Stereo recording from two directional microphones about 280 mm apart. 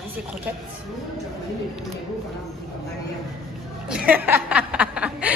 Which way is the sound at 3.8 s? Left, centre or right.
Centre.